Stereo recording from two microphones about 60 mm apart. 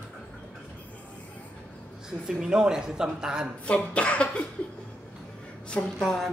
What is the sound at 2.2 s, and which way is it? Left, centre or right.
Speech, centre.